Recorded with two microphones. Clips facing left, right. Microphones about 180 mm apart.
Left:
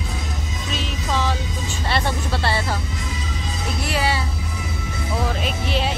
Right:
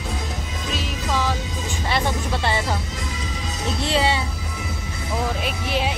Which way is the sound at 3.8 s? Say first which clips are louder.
Right 2 dB; 25° right (ahead or behind).